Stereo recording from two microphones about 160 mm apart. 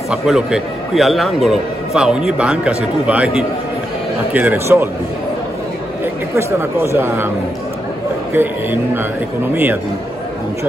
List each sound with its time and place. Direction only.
0.1 s a man's voice: centre (ahead or behind)
6.3 s speech: 15° right (ahead or behind)
8.3 s speech: 15° right (ahead or behind)